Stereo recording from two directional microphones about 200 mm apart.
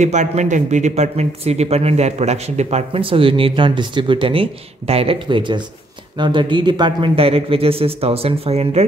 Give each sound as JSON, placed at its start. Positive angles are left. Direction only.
{"t": 0.0, "sound": "speech", "side_deg": -35}